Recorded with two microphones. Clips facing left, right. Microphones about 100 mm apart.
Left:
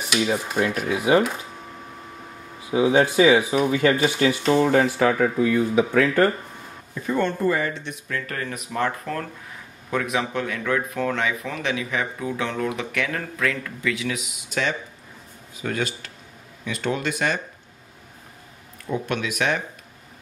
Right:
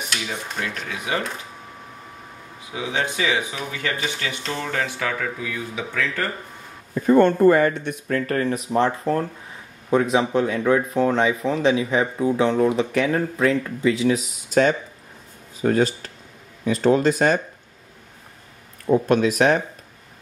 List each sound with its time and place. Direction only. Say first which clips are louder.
0.7 s speech: left 7 dB; 10° left (ahead or behind)
2.7 s speech: left 8 dB; 35° left (ahead or behind)
6.9 s speech: right 8 dB; 50° right (ahead or behind)
18.9 s speech: right 9 dB; 40° right (ahead or behind)